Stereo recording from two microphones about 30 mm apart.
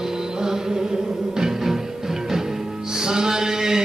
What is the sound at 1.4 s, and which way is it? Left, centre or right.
Music, centre.